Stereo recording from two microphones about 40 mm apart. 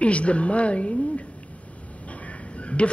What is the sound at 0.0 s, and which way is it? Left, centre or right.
A woman's voice, left.